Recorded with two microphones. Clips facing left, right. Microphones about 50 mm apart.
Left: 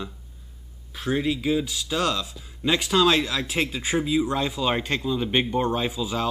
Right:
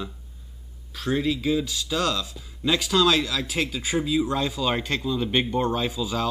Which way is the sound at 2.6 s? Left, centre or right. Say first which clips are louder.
Left 1 dB; left.